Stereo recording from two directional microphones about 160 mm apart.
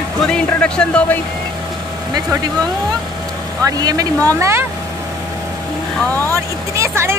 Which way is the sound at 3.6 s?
25° right (ahead or behind).